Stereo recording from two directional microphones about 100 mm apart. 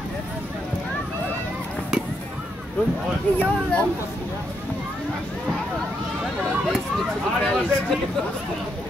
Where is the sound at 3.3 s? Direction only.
15° left (ahead or behind).